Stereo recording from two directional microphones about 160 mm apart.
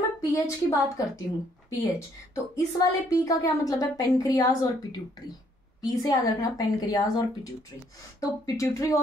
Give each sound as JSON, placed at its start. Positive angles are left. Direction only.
{"t": 0.2, "sound": "a woman's voice", "side_deg": 20}
{"t": 5.8, "sound": "a woman's voice", "side_deg": 25}